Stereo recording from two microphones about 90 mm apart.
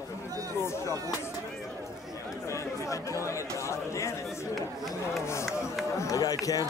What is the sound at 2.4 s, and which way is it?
Chatter, 35° left (ahead or behind).